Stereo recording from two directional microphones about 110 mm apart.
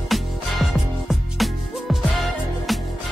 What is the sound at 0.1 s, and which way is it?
Music, centre (ahead or behind).